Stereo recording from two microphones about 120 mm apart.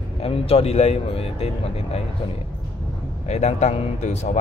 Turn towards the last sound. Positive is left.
turn(degrees=70)  # may be behind; listen again after turning